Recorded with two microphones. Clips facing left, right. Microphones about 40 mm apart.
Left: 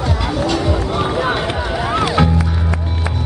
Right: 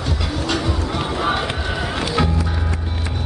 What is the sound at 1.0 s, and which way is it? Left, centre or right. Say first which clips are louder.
Run: left 1 dB; centre.